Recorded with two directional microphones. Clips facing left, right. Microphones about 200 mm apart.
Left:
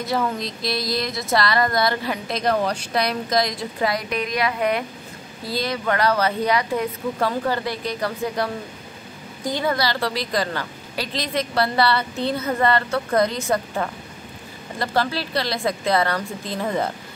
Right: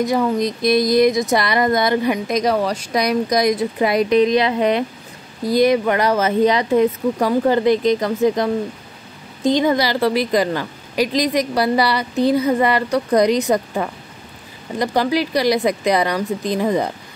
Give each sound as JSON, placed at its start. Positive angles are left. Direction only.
{"t": 0.0, "sound": "a woman's voice", "side_deg": -15}